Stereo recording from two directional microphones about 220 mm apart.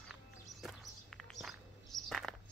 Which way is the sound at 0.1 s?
Centre (ahead or behind).